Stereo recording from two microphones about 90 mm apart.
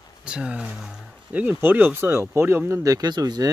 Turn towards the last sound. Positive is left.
turn(degrees=-45)  # may be behind; listen again after turning